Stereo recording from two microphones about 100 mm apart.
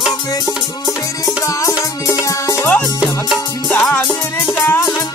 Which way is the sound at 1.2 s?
35° left (ahead or behind).